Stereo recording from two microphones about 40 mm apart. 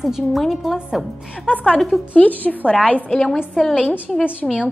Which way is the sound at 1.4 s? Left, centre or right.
Left.